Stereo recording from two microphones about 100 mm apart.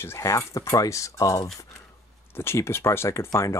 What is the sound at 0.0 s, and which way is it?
Speech, 30° left (ahead or behind).